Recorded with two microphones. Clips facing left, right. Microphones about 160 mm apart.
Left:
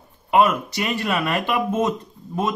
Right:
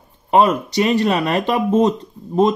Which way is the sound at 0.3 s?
35° right (ahead or behind).